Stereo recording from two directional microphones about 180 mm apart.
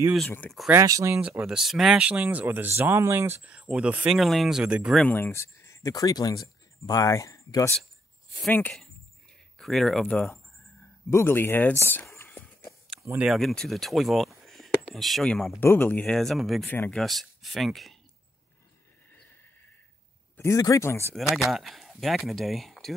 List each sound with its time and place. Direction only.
0.3 s speech: 5° left (ahead or behind)
0.7 s speech: 15° right (ahead or behind)
5.0 s speech: 10° left (ahead or behind)
8.5 s speech: 5° left (ahead or behind)
13.0 s speech: 10° right (ahead or behind)
13.3 s speech: centre (ahead or behind)
16.7 s speech: 10° left (ahead or behind)
17.0 s speech: centre (ahead or behind)
20.3 s speech: 15° left (ahead or behind)
21.1 s speech: centre (ahead or behind)